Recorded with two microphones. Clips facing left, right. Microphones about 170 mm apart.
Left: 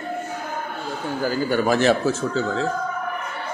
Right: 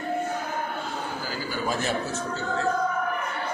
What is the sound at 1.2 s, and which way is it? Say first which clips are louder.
Speech: left 13 dB; 65° left (ahead or behind).